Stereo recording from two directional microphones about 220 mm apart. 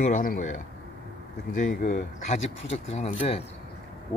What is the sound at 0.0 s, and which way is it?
Speech, 35° left (ahead or behind).